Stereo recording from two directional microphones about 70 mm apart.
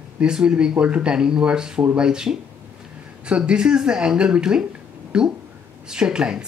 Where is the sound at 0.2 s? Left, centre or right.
Centre.